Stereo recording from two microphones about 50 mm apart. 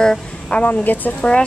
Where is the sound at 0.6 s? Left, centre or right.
Left.